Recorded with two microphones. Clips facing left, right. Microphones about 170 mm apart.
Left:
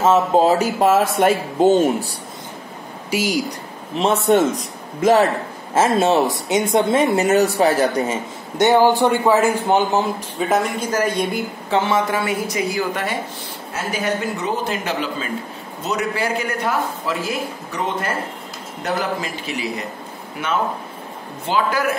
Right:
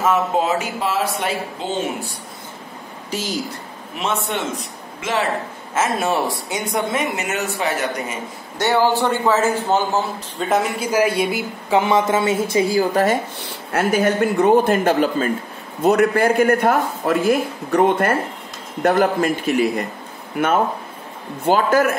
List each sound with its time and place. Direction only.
0.0 s a man's voice: 30° left (ahead or behind)
3.1 s a man's voice: 10° left (ahead or behind)
3.9 s a man's voice: 35° left (ahead or behind)
5.8 s speech: 25° left (ahead or behind)
8.5 s a man's voice: 20° left (ahead or behind)
10.5 s speech: 5° right (ahead or behind); by 13.2 s 40° right (ahead or behind)
13.7 s speech: 60° right (ahead or behind)